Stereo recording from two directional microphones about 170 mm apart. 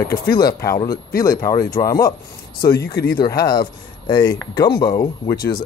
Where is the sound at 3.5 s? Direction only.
25° left (ahead or behind).